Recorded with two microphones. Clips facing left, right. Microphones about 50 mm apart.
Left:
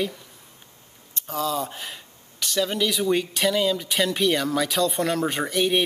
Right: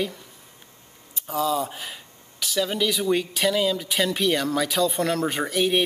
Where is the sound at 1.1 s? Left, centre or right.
Centre.